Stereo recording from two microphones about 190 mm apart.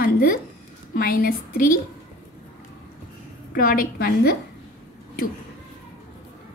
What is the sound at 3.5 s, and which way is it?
Speech, 50° left (ahead or behind).